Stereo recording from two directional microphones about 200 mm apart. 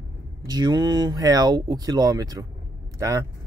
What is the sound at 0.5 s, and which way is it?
Speech, 20° right (ahead or behind).